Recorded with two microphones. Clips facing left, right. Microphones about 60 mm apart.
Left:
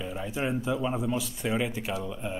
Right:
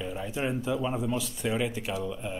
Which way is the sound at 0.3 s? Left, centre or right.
Centre.